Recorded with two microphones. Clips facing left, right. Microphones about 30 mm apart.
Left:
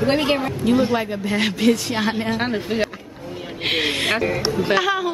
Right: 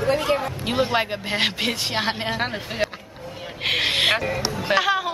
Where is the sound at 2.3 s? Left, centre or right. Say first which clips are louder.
Left 4 dB; centre.